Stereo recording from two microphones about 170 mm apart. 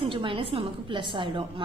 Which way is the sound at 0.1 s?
30° right (ahead or behind).